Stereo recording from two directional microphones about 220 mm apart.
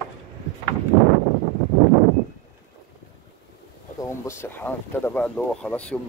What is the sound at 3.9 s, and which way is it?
Speech, 10° left (ahead or behind).